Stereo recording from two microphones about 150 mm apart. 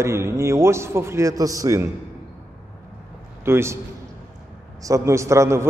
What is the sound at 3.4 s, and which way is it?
Speech, 15° right (ahead or behind).